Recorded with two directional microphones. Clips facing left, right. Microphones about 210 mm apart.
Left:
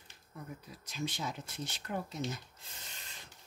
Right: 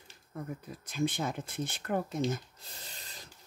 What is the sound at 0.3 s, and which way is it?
Speech, 55° right (ahead or behind).